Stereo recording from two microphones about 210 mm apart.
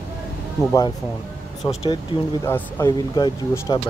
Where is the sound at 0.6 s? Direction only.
15° left (ahead or behind).